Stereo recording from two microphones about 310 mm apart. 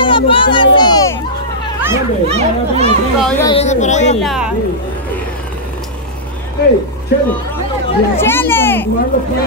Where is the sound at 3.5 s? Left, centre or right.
Left.